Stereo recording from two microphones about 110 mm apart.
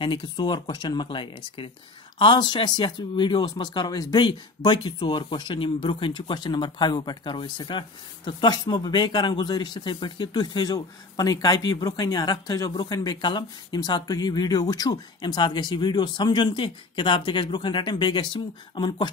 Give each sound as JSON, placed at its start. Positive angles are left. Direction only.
{"t": 0.0, "sound": "speech", "side_deg": 45}